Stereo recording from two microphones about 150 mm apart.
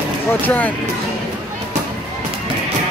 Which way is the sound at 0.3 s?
10° left (ahead or behind).